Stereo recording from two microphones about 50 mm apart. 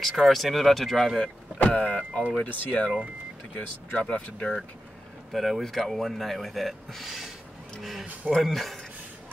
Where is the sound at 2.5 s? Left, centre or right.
Left.